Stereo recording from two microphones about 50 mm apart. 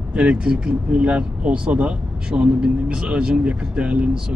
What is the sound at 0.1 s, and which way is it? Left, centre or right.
Speech, right.